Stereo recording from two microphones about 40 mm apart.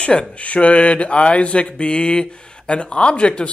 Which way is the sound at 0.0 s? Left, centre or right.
Left.